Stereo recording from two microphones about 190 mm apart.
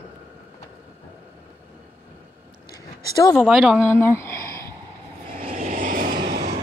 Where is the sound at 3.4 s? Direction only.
5° right (ahead or behind).